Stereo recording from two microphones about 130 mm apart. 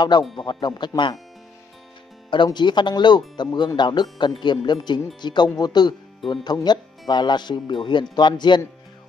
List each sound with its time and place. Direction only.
0.1 s speech: 35° left (ahead or behind)
2.3 s speech: 35° left (ahead or behind)